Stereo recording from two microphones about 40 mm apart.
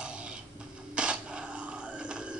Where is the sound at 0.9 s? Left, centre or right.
Right.